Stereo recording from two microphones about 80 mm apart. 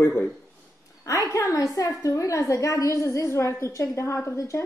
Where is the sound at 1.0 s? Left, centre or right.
Left.